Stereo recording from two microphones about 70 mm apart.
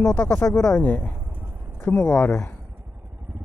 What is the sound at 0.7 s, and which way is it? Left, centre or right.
Speech, left.